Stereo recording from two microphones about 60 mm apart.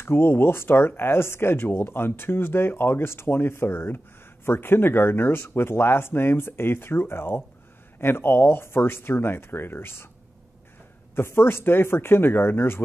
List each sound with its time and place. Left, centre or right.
0.0 s speech: left
11.1 s speech: left